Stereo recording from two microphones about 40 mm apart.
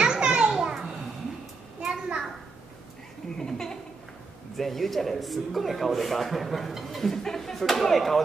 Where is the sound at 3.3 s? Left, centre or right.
Centre.